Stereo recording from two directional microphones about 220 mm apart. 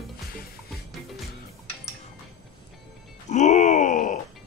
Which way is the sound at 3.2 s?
35° left (ahead or behind).